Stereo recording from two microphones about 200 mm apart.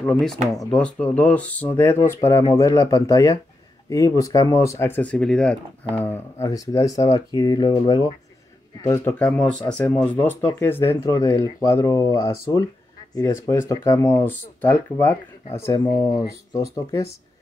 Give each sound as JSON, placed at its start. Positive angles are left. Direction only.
{"t": 0.0, "sound": "speech", "side_deg": 0}